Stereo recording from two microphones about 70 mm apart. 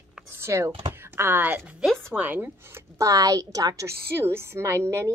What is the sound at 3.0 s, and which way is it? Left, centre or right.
Speech, right.